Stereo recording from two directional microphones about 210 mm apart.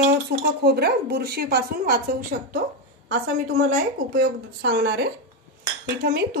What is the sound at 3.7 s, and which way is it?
A woman's voice, 45° right (ahead or behind).